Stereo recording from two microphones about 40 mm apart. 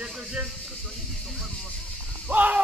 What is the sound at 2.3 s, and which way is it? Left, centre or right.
Speech, right.